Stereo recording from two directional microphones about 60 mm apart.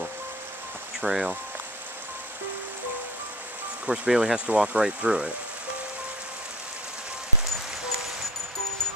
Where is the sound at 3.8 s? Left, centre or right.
Centre.